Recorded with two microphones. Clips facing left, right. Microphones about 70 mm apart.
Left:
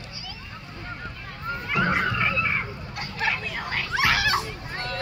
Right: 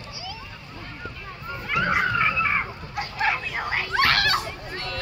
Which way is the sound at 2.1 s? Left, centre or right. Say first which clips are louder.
Right 3 dB; centre.